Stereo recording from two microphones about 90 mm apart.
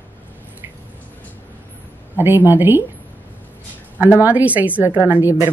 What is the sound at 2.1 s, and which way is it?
Speech, 20° right (ahead or behind).